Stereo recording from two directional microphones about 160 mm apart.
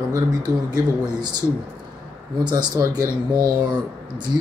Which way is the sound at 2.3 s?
25° right (ahead or behind).